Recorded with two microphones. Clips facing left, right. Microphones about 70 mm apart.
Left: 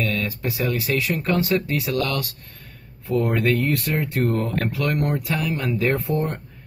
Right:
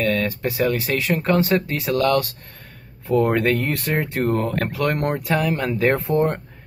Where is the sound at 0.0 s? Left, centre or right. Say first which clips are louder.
Right 4 dB; right.